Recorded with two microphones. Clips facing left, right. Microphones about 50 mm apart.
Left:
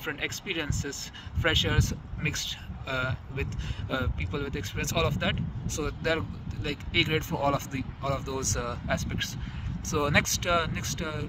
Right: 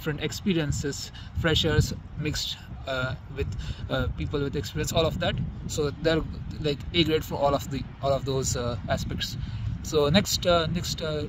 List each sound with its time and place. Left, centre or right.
0.1 s speech: left
0.8 s speech: left
1.4 s speech: left